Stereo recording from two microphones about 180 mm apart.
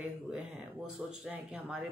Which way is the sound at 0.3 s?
5° right (ahead or behind).